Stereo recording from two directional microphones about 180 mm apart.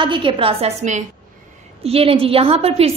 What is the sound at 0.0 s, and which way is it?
A woman's voice, 25° right (ahead or behind).